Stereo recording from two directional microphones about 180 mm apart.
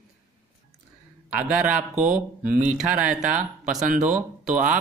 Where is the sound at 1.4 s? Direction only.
45° right (ahead or behind).